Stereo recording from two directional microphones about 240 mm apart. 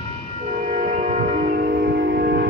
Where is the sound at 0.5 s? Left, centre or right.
Right.